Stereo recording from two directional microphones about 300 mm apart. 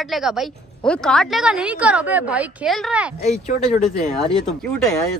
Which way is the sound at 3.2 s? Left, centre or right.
Left.